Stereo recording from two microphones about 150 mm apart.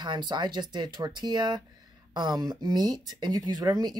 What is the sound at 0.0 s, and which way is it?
A woman's voice, 30° right (ahead or behind).